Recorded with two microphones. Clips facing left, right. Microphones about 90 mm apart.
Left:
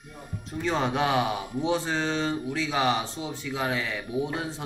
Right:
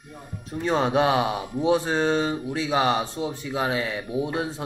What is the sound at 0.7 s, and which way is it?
Speech, 10° right (ahead or behind).